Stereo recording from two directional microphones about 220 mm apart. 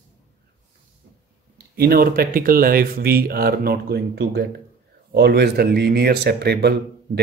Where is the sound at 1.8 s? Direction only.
40° right (ahead or behind).